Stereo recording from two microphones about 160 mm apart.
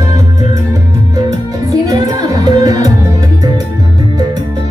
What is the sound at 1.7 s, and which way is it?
Music, 20° right (ahead or behind).